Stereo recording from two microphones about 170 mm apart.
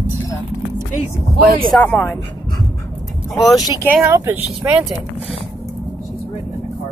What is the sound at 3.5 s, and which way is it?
Speech, 20° left (ahead or behind).